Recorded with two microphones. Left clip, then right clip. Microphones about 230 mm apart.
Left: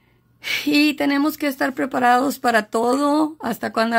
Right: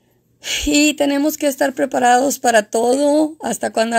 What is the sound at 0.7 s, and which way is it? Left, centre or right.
Speech, centre.